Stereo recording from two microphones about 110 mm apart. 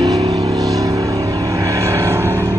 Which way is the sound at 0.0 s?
30° right (ahead or behind).